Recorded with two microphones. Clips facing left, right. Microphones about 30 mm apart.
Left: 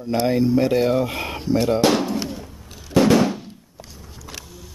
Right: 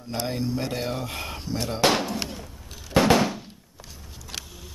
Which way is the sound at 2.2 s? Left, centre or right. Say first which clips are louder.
Left 6 dB; centre.